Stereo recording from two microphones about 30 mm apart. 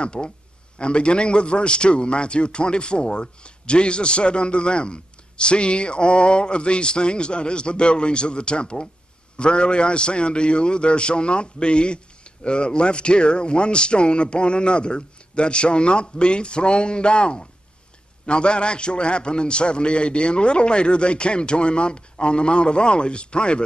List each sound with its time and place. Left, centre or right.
0.0 s a man's voice: left